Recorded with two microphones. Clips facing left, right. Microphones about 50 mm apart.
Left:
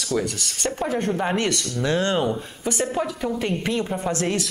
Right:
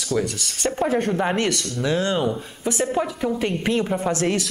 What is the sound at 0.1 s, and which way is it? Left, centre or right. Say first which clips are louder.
Speech: right 1 dB; centre.